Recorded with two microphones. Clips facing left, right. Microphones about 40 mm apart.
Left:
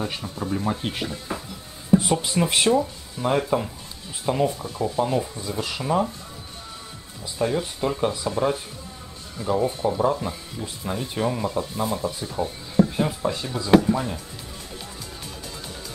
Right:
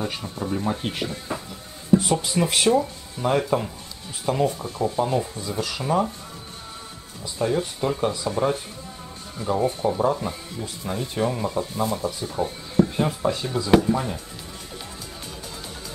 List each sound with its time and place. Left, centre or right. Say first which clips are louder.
0.0 s speech: even; centre
7.3 s speech: right 1 dB; centre